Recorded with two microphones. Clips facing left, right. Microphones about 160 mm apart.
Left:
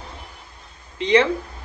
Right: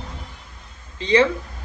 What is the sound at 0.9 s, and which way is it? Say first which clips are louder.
Speech: left 1 dB; 30° right (ahead or behind).